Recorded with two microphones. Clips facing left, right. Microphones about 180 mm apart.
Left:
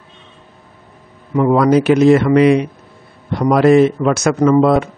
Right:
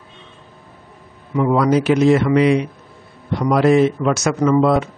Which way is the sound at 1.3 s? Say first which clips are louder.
Left 4 dB; 50° left (ahead or behind).